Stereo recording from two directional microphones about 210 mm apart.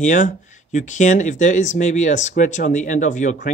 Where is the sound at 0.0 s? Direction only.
35° left (ahead or behind).